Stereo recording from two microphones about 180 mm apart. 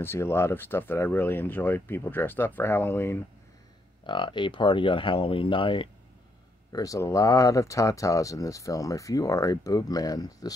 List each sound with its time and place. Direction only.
0.0 s speech: 15° left (ahead or behind)
4.0 s speech: 25° left (ahead or behind)